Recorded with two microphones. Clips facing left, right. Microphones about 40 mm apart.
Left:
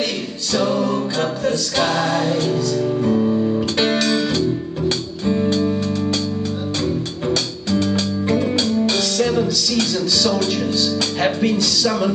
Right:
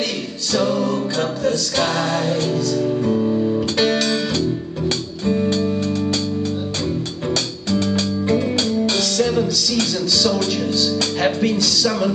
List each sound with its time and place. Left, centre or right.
0.5 s music: centre
3.7 s music: centre
4.0 s music: centre
7.2 s music: centre
9.4 s speech: centre